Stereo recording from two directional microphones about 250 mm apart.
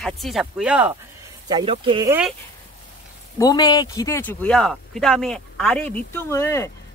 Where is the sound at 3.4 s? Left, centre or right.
Centre.